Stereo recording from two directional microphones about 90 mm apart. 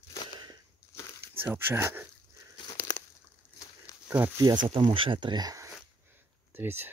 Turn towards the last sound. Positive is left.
turn(degrees=-25)  # may be behind; listen again after turning